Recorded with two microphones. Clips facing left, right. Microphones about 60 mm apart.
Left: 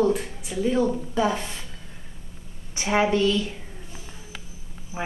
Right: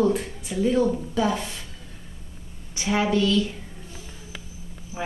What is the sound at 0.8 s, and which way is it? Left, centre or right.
Speech, centre.